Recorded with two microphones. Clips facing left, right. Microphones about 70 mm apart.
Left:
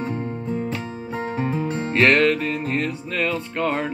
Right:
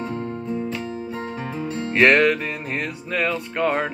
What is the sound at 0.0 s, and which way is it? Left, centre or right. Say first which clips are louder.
Music: left 1 dB; centre.